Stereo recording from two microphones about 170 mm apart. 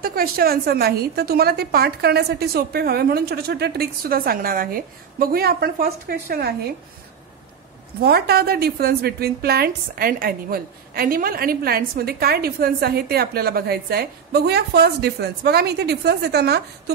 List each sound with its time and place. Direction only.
0.0 s a woman's voice: 60° right (ahead or behind)
8.0 s a woman's voice: 65° right (ahead or behind)